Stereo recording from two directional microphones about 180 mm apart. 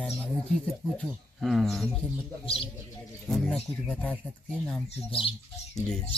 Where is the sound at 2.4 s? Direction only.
30° left (ahead or behind).